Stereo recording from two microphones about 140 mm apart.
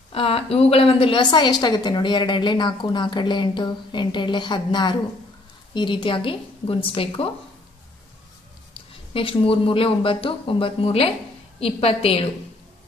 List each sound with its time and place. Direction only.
0.1 s a woman's voice: 45° left (ahead or behind)
8.7 s a woman's voice: 40° left (ahead or behind)